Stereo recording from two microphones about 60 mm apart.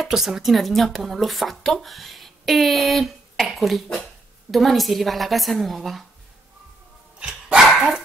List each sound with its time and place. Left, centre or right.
0.0 s speech: centre
7.2 s dog: centre